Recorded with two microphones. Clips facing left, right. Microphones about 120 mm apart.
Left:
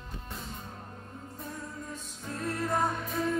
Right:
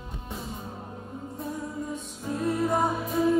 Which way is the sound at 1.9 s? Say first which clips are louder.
Right 7 dB; 5° right (ahead or behind).